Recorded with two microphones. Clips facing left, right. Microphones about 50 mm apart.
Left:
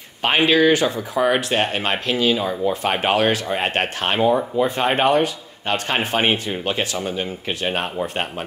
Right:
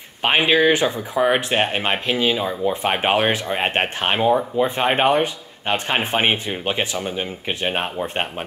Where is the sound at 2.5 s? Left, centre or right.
Centre.